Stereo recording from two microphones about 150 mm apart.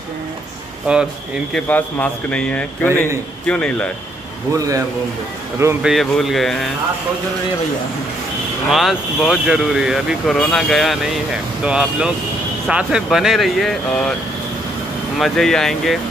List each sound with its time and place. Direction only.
0.9 s speech: 10° right (ahead or behind)
1.5 s speech: 10° left (ahead or behind)
4.6 s speech: 20° right (ahead or behind)
5.8 s speech: centre (ahead or behind)
8.6 s speech: centre (ahead or behind)
15.1 s speech: centre (ahead or behind)